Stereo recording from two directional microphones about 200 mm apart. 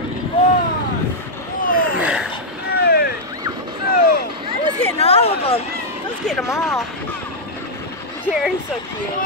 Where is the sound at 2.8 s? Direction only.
55° left (ahead or behind).